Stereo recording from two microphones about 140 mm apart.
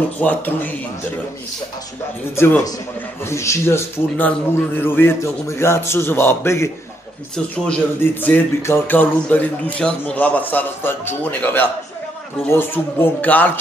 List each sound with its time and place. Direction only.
0.2 s speech: 10° left (ahead or behind)
2.3 s speech: 15° left (ahead or behind)
7.3 s speech: 5° left (ahead or behind)